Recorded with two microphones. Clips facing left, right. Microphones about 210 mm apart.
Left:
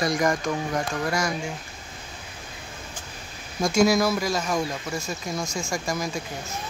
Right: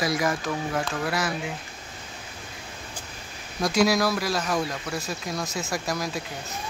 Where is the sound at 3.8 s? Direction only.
Centre (ahead or behind).